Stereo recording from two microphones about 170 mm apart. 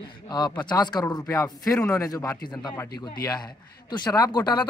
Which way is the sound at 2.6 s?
20° left (ahead or behind).